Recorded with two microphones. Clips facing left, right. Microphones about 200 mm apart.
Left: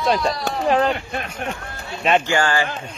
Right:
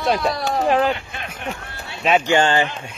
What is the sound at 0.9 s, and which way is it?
Speech, 50° left (ahead or behind).